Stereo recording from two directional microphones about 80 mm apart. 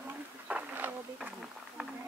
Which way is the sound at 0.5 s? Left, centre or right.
Centre.